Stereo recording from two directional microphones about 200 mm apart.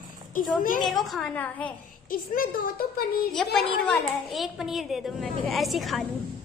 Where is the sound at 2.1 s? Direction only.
45° left (ahead or behind).